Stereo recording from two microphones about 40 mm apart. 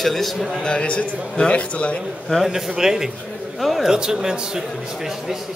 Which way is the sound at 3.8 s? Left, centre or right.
Centre.